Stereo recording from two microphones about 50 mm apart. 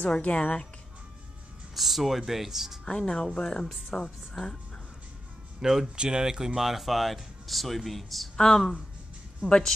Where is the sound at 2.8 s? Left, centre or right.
Centre.